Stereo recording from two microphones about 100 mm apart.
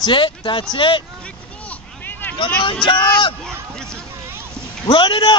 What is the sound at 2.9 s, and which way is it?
Speech, 50° left (ahead or behind).